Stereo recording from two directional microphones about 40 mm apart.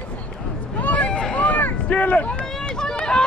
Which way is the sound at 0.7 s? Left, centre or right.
Left.